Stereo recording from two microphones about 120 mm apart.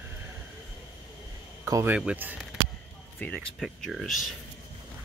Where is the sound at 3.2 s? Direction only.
10° left (ahead or behind).